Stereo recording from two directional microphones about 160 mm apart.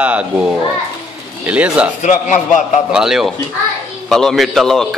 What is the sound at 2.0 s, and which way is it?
Speech, 50° left (ahead or behind).